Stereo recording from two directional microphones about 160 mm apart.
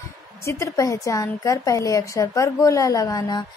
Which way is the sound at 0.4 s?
20° left (ahead or behind).